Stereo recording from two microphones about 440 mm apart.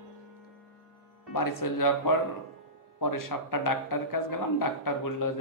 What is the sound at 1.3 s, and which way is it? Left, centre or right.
A man's voice, left.